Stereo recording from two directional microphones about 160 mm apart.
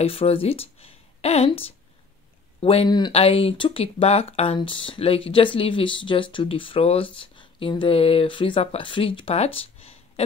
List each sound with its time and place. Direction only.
0.0 s speech: 35° left (ahead or behind)